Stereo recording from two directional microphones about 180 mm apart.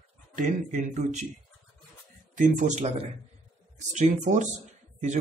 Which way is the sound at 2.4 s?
45° right (ahead or behind).